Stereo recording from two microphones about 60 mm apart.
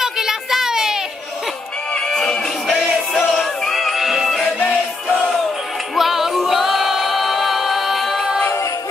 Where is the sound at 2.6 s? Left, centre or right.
Centre.